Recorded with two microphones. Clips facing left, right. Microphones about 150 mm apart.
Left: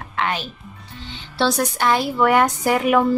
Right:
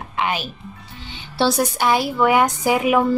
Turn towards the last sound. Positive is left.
turn(degrees=-5)  # may be behind; listen again after turning